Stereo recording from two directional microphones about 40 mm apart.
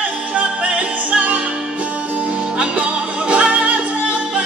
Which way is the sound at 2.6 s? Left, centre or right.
Right.